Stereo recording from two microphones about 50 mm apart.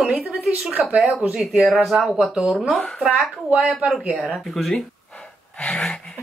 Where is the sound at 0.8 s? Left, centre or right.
Right.